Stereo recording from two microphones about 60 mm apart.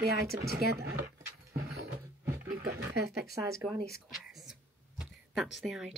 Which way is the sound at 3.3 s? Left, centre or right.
Right.